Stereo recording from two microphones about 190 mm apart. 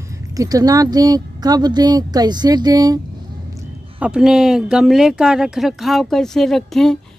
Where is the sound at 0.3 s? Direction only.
20° right (ahead or behind).